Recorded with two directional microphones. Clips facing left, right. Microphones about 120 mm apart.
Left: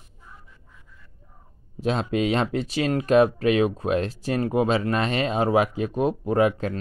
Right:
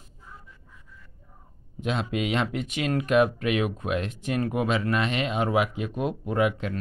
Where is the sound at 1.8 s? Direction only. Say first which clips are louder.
Left 4 dB; 35° left (ahead or behind).